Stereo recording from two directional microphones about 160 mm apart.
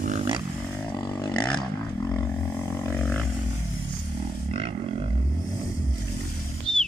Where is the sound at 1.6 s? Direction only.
10° left (ahead or behind).